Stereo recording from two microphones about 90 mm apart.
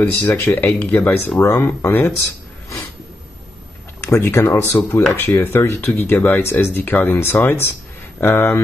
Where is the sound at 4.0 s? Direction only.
30° left (ahead or behind).